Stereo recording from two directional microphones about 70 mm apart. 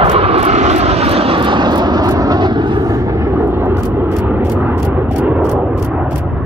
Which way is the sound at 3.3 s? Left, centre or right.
Right.